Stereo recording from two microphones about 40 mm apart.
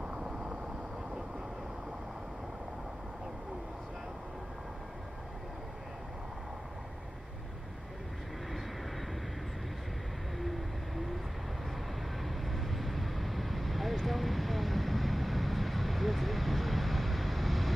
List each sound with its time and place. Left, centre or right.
0.0 s vehicle: right
10.4 s vehicle: centre
12.2 s vehicle: centre